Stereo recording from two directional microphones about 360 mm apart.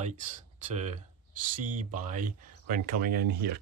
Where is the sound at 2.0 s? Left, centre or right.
Right.